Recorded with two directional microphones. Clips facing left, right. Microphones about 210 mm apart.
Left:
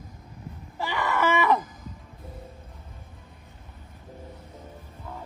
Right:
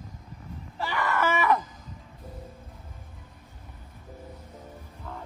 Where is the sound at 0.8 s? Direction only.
15° left (ahead or behind).